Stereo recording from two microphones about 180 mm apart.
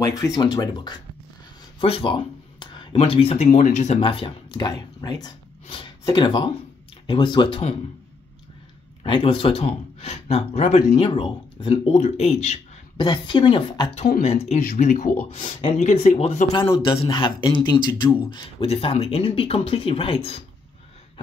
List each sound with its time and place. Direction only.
0.0 s a man's voice: 20° left (ahead or behind)
9.0 s a man's voice: 30° left (ahead or behind)
12.9 s a man's voice: 25° left (ahead or behind)